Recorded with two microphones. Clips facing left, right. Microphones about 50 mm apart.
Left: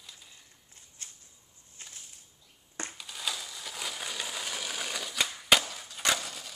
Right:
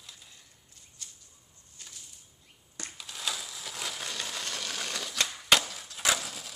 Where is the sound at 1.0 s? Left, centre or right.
Left.